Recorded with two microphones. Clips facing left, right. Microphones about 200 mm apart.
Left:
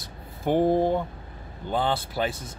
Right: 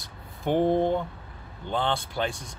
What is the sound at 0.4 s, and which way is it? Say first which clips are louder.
Speech: left 1 dB; 5° left (ahead or behind).